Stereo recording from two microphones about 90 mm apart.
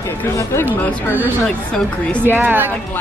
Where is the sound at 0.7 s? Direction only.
20° right (ahead or behind).